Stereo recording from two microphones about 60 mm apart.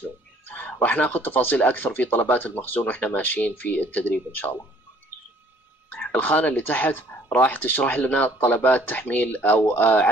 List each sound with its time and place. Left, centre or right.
0.5 s speech: left
5.9 s speech: left